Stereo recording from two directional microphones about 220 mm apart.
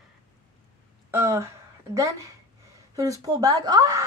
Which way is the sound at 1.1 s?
10° right (ahead or behind).